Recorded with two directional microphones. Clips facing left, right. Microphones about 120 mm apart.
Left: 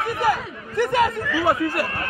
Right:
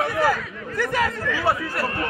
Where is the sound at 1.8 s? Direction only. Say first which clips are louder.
Right 3 dB; 25° right (ahead or behind).